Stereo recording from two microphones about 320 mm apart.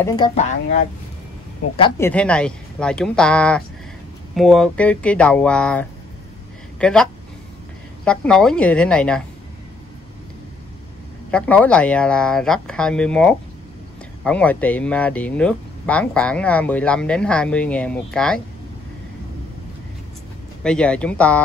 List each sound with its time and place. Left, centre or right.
0.0 s speech: centre
1.8 s speech: centre
11.2 s speech: centre
20.6 s speech: centre